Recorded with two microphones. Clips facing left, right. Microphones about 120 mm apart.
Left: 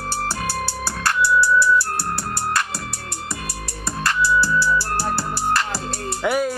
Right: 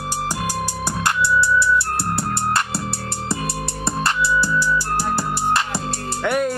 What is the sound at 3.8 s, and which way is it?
Music, 25° right (ahead or behind).